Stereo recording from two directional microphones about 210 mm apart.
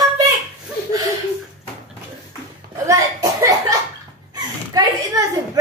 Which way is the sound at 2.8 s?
15° right (ahead or behind).